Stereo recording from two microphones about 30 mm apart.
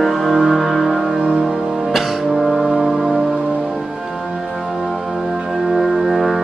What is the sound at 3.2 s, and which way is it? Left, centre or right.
Music, centre.